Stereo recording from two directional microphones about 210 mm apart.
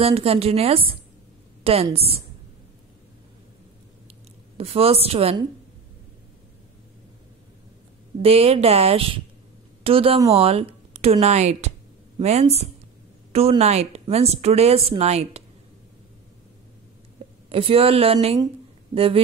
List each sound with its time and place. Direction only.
0.0 s a woman's voice: 30° right (ahead or behind)
4.6 s a woman's voice: 30° right (ahead or behind)
8.2 s a woman's voice: 30° right (ahead or behind)
17.5 s a woman's voice: 25° right (ahead or behind)